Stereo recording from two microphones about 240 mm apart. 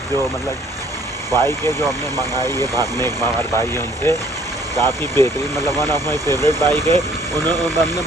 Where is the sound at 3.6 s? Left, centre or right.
Centre.